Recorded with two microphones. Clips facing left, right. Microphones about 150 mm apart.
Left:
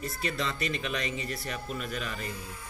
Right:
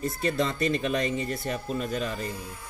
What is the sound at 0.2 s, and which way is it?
Speech, 40° right (ahead or behind).